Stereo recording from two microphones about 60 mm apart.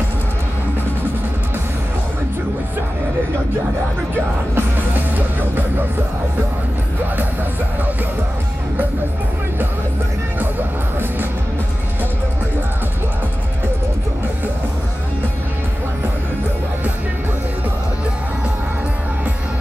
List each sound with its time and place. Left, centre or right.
4.6 s music: right